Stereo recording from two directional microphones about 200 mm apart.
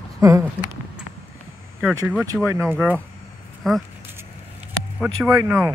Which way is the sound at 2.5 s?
15° right (ahead or behind).